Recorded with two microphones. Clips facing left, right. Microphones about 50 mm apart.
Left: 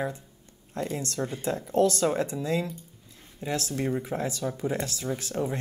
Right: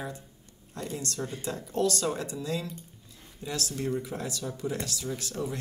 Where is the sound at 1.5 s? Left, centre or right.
Left.